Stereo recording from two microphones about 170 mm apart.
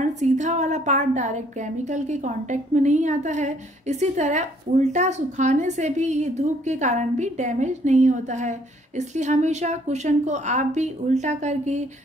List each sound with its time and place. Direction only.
0.0 s a woman's voice: 45° right (ahead or behind)